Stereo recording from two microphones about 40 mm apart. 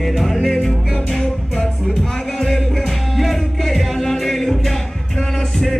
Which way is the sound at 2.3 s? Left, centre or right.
Centre.